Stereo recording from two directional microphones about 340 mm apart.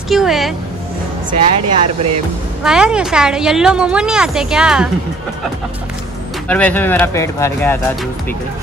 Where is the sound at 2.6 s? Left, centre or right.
Centre.